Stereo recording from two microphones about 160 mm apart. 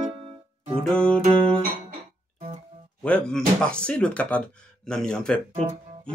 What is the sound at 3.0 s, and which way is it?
Speech, 5° left (ahead or behind).